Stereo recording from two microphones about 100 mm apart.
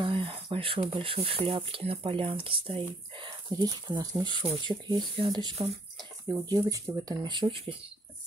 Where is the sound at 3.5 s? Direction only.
40° right (ahead or behind); by 7.9 s 65° right (ahead or behind).